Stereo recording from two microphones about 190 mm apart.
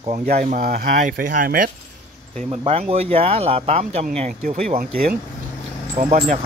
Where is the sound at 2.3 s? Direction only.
30° right (ahead or behind).